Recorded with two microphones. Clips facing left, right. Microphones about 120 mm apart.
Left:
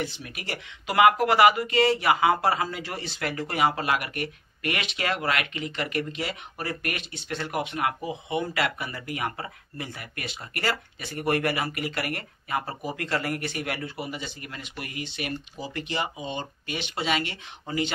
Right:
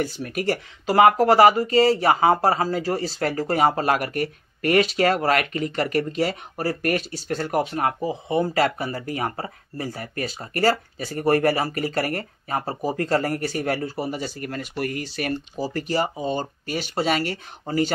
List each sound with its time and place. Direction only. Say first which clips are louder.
0.0 s speech: right 9 dB; 40° right (ahead or behind)